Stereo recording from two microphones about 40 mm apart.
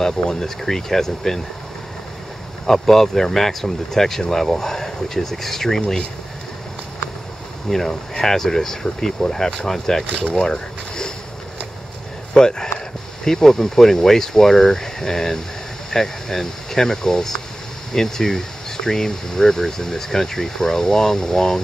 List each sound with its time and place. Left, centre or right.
0.0 s speech: centre
2.6 s speech: centre
7.9 s speech: centre
10.0 s speech: left
12.4 s speech: centre